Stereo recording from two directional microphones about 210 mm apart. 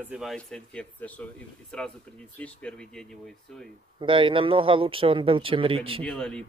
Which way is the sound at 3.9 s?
25° right (ahead or behind).